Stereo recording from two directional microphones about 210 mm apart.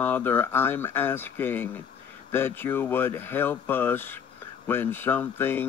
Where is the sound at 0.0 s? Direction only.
10° left (ahead or behind).